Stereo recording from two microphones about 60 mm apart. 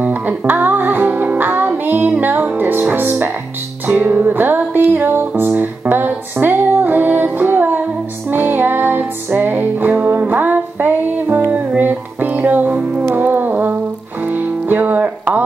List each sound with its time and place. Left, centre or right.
0.0 s music: right